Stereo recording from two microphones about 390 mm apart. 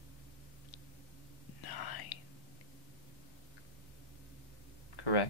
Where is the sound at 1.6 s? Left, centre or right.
Left.